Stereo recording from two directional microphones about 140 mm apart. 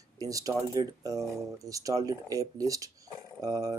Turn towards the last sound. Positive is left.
turn(degrees=-25)  # may be behind; listen again after turning